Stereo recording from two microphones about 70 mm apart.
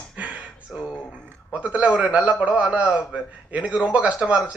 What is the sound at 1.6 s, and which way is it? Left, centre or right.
A man's voice, centre.